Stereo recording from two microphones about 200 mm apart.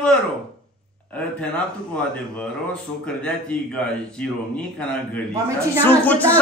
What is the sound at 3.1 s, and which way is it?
A man's voice, 5° left (ahead or behind).